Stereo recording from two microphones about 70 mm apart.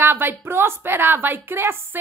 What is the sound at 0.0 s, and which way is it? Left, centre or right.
A woman's voice, right.